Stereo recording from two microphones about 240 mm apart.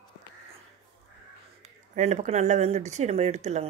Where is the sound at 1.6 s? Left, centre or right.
Right.